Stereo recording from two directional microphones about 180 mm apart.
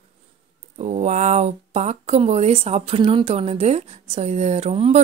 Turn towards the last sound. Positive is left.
turn(degrees=-35)  # may be behind; listen again after turning